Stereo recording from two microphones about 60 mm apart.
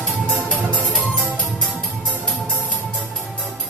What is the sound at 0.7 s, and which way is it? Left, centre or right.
Music, centre.